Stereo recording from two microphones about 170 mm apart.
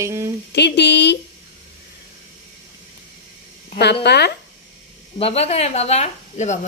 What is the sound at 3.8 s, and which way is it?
Speech, 80° left.